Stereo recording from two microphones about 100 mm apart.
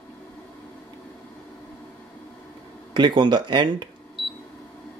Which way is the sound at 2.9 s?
50° right (ahead or behind).